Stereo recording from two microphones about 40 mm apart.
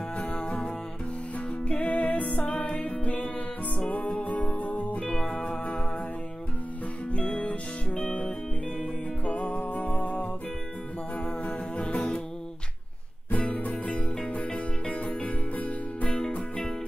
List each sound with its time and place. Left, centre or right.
0.2 s music: left
1.8 s music: left
5.0 s music: left
7.1 s music: left
9.2 s music: left
11.7 s music: left
13.5 s music: left